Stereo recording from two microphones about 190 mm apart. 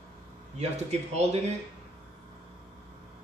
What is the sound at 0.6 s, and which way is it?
Speech, 35° right (ahead or behind).